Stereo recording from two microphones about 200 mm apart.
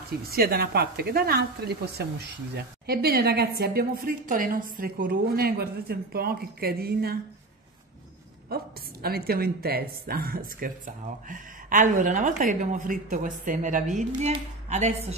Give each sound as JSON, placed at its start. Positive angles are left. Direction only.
{"t": 0.3, "sound": "speech", "side_deg": -50}
{"t": 8.5, "sound": "speech", "side_deg": -50}